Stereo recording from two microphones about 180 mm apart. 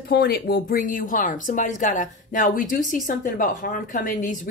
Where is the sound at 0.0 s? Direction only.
60° left (ahead or behind).